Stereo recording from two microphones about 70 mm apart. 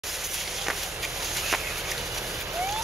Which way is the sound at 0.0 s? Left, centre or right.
Centre.